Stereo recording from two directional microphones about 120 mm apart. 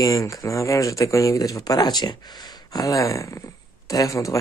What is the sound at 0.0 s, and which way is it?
Speech, 30° left (ahead or behind).